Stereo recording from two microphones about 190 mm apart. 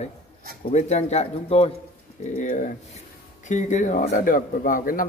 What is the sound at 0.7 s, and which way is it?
A man's voice, 35° left (ahead or behind).